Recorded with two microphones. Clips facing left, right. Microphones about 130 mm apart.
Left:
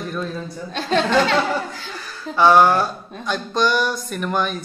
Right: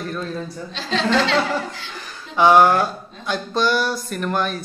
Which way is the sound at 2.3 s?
15° right (ahead or behind).